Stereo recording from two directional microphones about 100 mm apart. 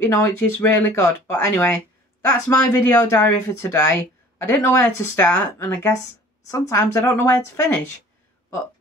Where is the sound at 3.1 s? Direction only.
30° left (ahead or behind).